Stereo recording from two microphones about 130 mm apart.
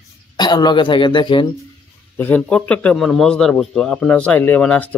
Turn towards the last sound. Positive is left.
turn(degrees=10)  # may be behind; listen again after turning